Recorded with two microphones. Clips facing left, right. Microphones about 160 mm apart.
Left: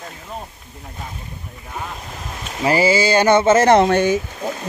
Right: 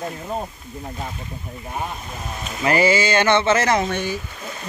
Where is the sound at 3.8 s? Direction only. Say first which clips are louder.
Left 9 dB; 80° left.